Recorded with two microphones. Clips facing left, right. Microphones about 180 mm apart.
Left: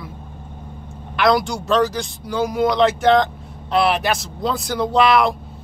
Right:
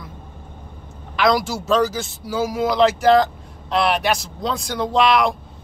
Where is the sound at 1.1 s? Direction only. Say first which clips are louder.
Left 1 dB; centre (ahead or behind).